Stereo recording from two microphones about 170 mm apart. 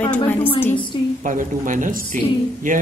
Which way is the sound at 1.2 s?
50° right (ahead or behind).